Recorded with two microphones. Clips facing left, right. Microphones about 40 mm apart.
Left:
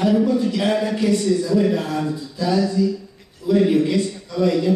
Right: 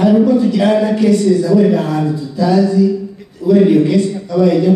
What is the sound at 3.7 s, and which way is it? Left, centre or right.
A man's voice, centre.